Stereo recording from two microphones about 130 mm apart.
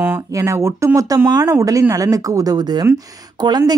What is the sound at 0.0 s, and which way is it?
Speech, 20° right (ahead or behind).